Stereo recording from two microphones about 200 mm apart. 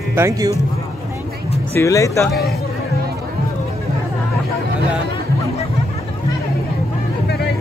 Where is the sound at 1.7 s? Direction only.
15° left (ahead or behind).